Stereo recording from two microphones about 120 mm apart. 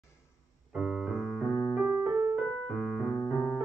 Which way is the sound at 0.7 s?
5° right (ahead or behind).